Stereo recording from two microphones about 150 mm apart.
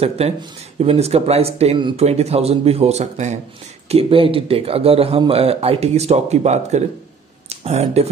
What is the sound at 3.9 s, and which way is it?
Speech, 35° right (ahead or behind).